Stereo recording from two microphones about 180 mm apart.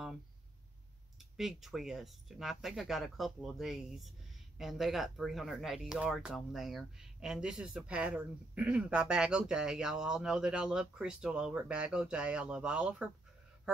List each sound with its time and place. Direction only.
1.3 s speech: centre (ahead or behind)